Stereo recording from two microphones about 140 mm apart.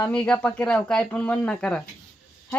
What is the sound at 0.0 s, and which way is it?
A woman's voice, 10° left (ahead or behind).